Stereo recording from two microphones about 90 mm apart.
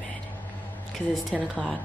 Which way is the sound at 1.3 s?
Centre (ahead or behind).